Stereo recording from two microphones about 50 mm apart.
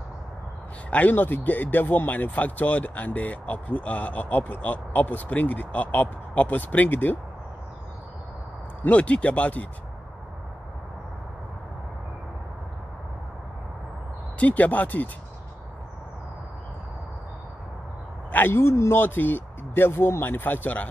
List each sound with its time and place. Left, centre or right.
0.8 s speech: left
1.1 s speech: left
8.8 s speech: left
14.4 s speech: left
18.5 s speech: left